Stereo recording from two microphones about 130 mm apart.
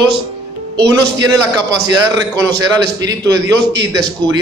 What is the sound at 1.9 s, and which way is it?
A man's voice, 30° right (ahead or behind).